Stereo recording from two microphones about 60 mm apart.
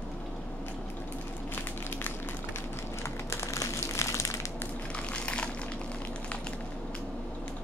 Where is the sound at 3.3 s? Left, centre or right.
Left.